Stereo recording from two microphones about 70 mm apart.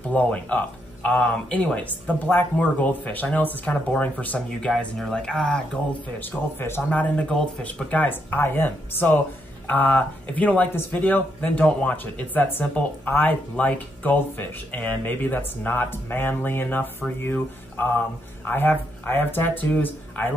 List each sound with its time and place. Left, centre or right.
0.1 s speech: left
6.1 s speech: left
7.0 s speech: centre